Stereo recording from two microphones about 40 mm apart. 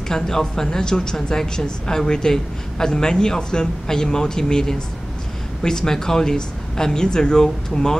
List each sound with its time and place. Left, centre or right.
0.1 s a woman's voice: centre